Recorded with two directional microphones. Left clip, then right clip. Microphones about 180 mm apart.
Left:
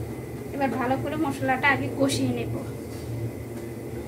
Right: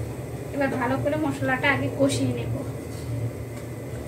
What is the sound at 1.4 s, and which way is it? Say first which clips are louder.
Speech: left 2 dB; 50° left (ahead or behind).